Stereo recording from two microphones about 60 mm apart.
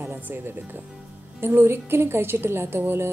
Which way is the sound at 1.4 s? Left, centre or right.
Right.